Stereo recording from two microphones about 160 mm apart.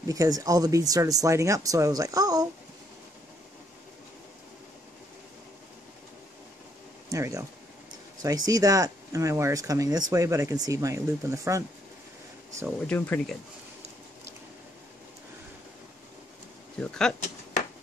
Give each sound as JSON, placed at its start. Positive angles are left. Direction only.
{"t": 0.1, "sound": "speech", "side_deg": -20}
{"t": 7.1, "sound": "speech", "side_deg": -20}
{"t": 12.8, "sound": "speech", "side_deg": 10}
{"t": 16.8, "sound": "speech", "side_deg": 5}